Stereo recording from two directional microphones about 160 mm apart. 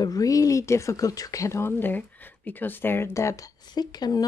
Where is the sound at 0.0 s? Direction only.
20° left (ahead or behind).